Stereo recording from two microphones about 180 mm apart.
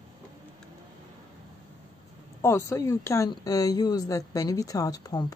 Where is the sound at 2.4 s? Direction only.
15° left (ahead or behind).